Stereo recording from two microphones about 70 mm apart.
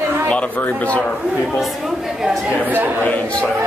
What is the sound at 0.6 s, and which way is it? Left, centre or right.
Speech, left.